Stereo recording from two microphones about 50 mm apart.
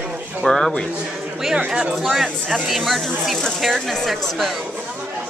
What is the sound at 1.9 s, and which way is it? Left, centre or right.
A woman's voice, centre.